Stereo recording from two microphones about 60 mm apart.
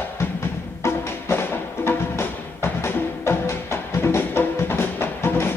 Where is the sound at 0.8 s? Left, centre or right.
Left.